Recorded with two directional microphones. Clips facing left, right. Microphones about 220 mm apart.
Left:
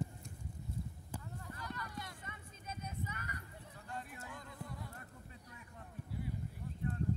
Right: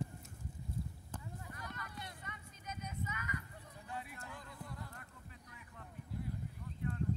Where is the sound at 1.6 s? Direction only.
25° right (ahead or behind).